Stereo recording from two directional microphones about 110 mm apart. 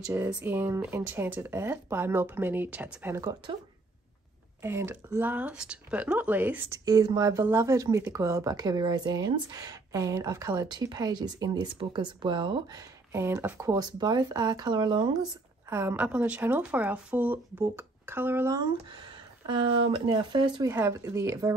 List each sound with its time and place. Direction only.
0.4 s speech: 15° right (ahead or behind)
3.5 s speech: 45° right (ahead or behind)
4.6 s speech: 25° right (ahead or behind)
6.7 s speech: 35° right (ahead or behind)
13.1 s speech: 25° right (ahead or behind); by 15.0 s 45° right (ahead or behind)
15.7 s speech: 20° right (ahead or behind)
18.5 s speech: 40° right (ahead or behind)
20.1 s speech: 40° right (ahead or behind)
21.0 s speech: 25° right (ahead or behind)